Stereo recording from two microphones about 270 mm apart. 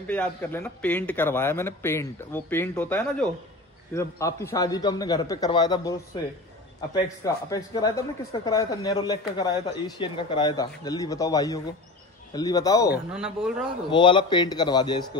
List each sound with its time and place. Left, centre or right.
0.1 s speech: centre
7.4 s speech: centre
13.1 s speech: centre
13.8 s speech: centre